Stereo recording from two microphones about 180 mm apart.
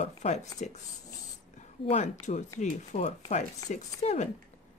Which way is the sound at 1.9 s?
40° left (ahead or behind).